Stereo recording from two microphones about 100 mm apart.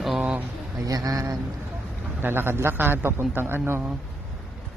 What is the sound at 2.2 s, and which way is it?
A man's voice, 20° right (ahead or behind).